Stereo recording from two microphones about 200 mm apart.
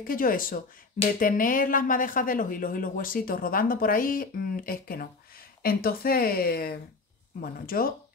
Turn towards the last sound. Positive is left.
turn(degrees=45)  # may be behind; listen again after turning